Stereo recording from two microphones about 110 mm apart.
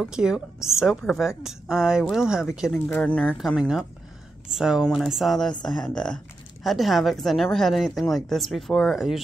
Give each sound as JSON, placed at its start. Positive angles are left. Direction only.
{"t": 0.0, "sound": "speech", "side_deg": -5}
{"t": 2.7, "sound": "speech", "side_deg": 15}
{"t": 3.3, "sound": "speech", "side_deg": -5}